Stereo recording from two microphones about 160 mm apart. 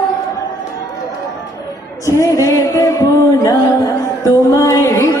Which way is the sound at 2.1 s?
20° left (ahead or behind).